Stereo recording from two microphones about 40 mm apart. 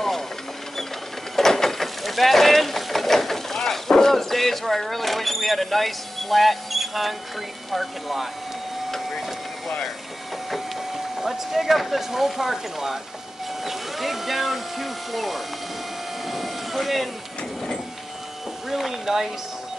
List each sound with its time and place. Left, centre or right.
1.3 s vehicle: centre
7.7 s speech: centre
8.9 s vehicle: centre
10.5 s speech: centre
16.3 s a sound: centre
18.7 s speech: centre